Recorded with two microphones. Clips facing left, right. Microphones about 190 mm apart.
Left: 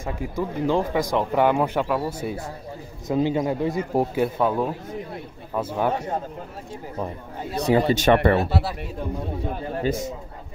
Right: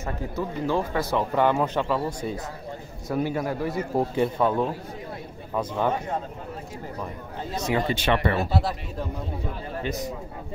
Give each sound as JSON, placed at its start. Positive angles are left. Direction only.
{"t": 0.0, "sound": "speech", "side_deg": 15}
{"t": 3.1, "sound": "speech", "side_deg": 20}
{"t": 4.1, "sound": "a man's voice", "side_deg": 5}
{"t": 7.5, "sound": "speech", "side_deg": 35}
{"t": 9.8, "sound": "speech", "side_deg": 25}